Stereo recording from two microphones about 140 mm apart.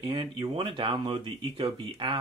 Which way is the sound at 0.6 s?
35° right (ahead or behind).